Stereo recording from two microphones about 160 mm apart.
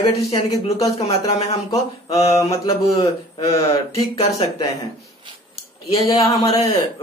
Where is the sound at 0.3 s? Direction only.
20° left (ahead or behind).